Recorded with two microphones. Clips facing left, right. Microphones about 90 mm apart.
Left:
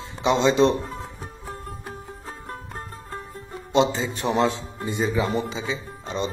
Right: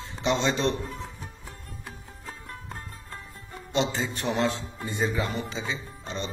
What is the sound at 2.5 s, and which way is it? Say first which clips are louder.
Music: left 5 dB; 40° left (ahead or behind).